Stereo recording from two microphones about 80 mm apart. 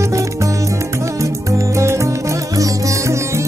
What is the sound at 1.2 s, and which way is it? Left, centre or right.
Music, right.